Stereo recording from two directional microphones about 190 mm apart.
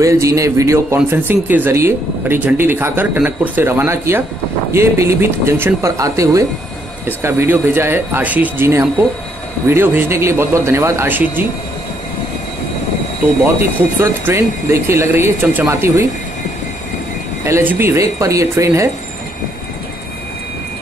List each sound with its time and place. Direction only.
0.0 s speech: 15° right (ahead or behind)
13.9 s speech: 15° right (ahead or behind)
17.5 s speech: 15° right (ahead or behind)